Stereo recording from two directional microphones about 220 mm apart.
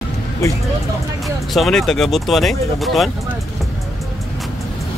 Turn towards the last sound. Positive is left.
turn(degrees=0)  # may be behind; listen again after turning